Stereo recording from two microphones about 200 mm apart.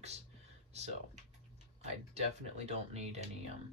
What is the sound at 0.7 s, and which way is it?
Computer keyboard, 35° right (ahead or behind).